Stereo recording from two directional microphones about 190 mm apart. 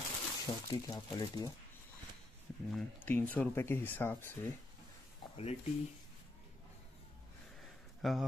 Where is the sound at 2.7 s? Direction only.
10° left (ahead or behind).